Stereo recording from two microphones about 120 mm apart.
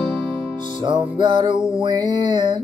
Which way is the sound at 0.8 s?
45° right (ahead or behind).